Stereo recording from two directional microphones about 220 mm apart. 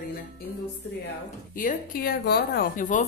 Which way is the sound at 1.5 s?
40° left (ahead or behind).